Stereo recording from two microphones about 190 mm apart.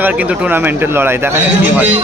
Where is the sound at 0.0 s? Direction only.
10° right (ahead or behind).